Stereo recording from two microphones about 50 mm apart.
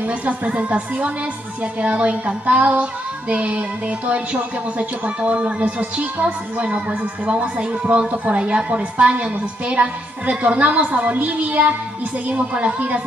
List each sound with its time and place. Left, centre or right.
0.2 s speech: right